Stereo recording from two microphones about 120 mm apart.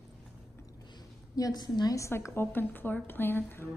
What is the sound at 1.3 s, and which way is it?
A woman's voice, 30° left (ahead or behind).